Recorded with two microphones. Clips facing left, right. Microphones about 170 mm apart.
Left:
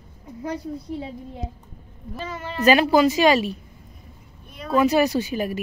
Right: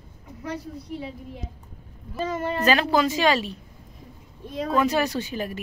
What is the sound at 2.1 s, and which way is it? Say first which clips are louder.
Speech: right 5 dB; 45° right (ahead or behind).